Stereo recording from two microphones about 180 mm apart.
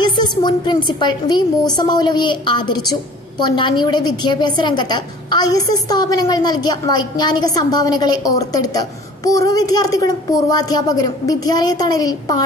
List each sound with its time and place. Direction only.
0.0 s a woman's voice: 25° left (ahead or behind)